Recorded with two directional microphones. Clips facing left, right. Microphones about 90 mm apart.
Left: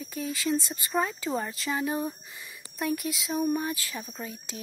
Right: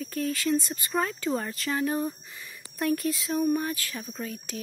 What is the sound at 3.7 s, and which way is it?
Speech, 20° left (ahead or behind).